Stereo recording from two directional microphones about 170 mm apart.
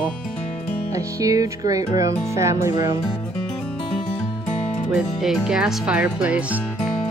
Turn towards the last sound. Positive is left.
turn(degrees=-5)  # may be behind; listen again after turning